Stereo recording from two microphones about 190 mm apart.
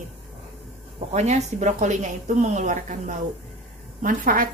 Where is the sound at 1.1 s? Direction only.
35° right (ahead or behind).